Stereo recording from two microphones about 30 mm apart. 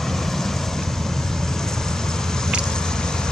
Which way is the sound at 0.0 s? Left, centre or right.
Centre.